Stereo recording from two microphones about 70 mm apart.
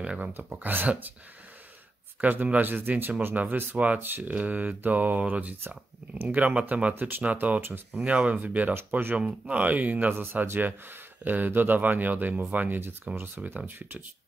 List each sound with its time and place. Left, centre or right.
0.0 s a sound: centre
0.6 s speech: right
2.2 s speech: right
8.0 s speech: centre